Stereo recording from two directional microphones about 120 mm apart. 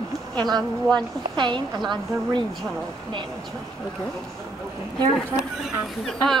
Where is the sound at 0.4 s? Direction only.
35° right (ahead or behind).